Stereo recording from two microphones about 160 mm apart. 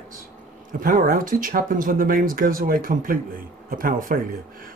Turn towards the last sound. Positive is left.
turn(degrees=-55)  # may be behind; listen again after turning